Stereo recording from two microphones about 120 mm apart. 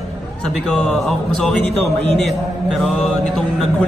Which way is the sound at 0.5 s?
5° left (ahead or behind).